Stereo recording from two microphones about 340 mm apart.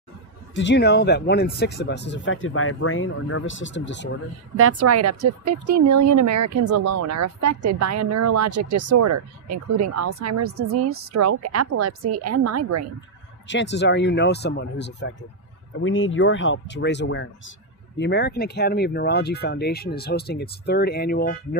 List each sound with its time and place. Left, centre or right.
0.6 s speech: left
4.6 s a woman's voice: right
13.5 s speech: left